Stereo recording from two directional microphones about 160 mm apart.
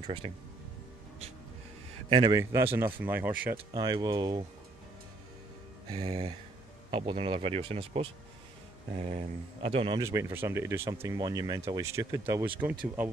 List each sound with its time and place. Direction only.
0.0 s speech: 30° right (ahead or behind)
2.0 s a man's voice: 35° right (ahead or behind)
2.3 s speech: 15° right (ahead or behind)
3.5 s speech: 25° right (ahead or behind)
6.0 s speech: 35° right (ahead or behind)
9.9 s speech: 20° right (ahead or behind)